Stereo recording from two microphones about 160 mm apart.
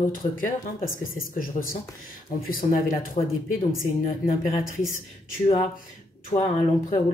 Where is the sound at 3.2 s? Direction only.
50° left (ahead or behind).